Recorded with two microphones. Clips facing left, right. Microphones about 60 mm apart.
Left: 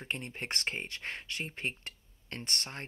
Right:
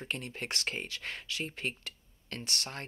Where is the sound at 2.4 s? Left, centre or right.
Left.